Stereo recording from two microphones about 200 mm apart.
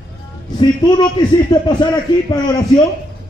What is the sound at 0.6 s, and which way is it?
A man's voice, 20° left (ahead or behind).